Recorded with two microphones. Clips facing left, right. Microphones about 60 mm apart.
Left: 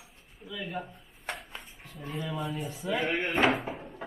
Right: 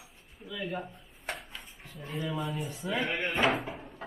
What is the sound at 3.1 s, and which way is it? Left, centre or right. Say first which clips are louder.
Speech: left 3 dB; left.